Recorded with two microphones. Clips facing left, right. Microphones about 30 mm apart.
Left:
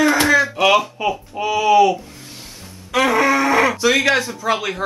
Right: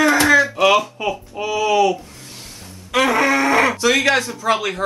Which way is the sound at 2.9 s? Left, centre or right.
Centre.